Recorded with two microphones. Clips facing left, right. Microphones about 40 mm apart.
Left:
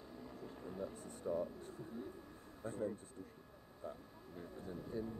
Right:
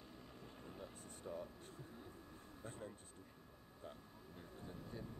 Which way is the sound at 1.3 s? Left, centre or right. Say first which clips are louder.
Left 9 dB; centre.